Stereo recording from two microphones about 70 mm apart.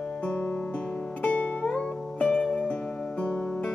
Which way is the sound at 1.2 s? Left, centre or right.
Centre.